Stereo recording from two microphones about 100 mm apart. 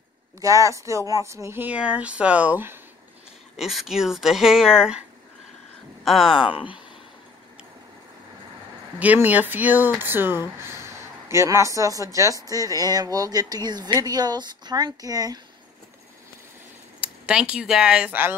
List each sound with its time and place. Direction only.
0.4 s speech: 30° right (ahead or behind)
3.5 s speech: centre (ahead or behind)
6.0 s speech: centre (ahead or behind)
6.3 s speech: 60° left (ahead or behind)
9.0 s speech: 15° right (ahead or behind); by 15.4 s 40° right (ahead or behind)
17.0 s speech: 10° right (ahead or behind)